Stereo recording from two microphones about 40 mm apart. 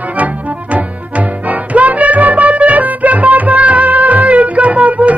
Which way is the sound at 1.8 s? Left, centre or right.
Right.